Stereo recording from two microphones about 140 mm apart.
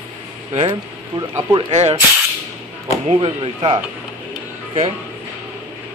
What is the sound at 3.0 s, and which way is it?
Speech, 40° right (ahead or behind).